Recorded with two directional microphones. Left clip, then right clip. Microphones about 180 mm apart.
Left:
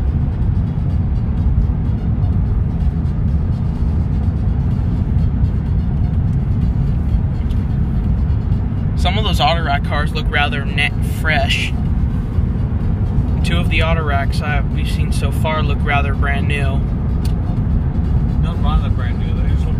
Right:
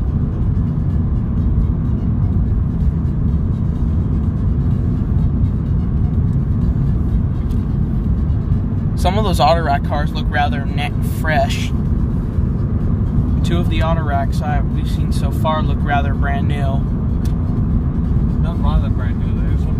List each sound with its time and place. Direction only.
9.0 s speech: 30° right (ahead or behind)
10.3 s speech: 15° right (ahead or behind)